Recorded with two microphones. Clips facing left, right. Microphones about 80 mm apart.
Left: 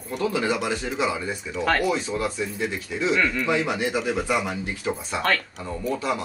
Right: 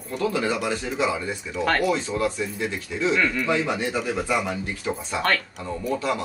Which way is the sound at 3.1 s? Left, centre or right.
Centre.